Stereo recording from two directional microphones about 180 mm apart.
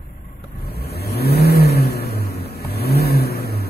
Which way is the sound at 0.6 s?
60° left (ahead or behind).